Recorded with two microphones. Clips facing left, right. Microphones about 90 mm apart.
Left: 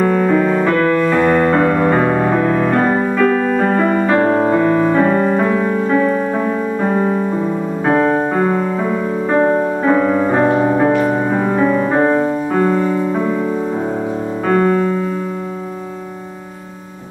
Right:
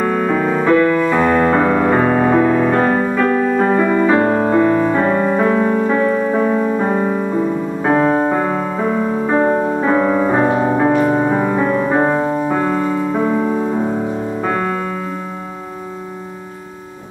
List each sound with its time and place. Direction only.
0.0 s music: 5° right (ahead or behind)
12.5 s music: 5° right (ahead or behind)
13.2 s music: 15° right (ahead or behind)
14.4 s piano: centre (ahead or behind)